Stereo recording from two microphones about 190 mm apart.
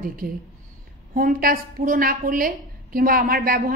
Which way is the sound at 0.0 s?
50° right (ahead or behind).